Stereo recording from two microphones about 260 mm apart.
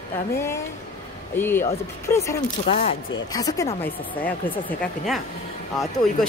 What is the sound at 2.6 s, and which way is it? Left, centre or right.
Speech, left.